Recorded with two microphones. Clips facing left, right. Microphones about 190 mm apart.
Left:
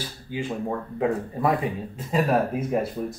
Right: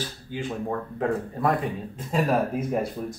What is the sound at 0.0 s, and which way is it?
Speech, 5° left (ahead or behind).